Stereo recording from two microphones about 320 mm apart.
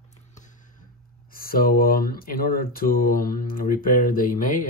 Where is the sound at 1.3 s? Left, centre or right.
Left.